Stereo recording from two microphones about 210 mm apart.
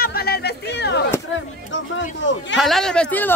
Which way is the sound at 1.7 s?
60° left (ahead or behind).